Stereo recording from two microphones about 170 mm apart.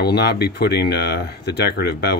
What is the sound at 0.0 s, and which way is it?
Speech, 75° left (ahead or behind).